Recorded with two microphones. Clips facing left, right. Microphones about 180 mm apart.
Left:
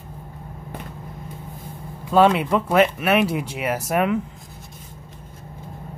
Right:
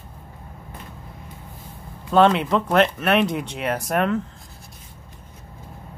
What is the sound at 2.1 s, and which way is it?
Speech, 5° left (ahead or behind).